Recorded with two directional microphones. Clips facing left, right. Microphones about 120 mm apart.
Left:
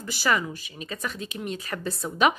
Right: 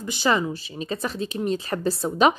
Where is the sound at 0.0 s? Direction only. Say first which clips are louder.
Right 3 dB; 20° right (ahead or behind).